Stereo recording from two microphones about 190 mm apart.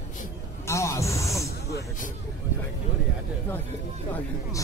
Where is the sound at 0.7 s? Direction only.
15° left (ahead or behind).